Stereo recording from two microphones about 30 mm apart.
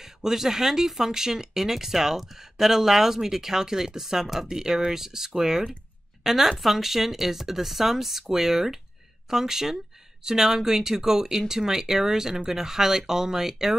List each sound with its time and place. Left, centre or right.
0.0 s speech: centre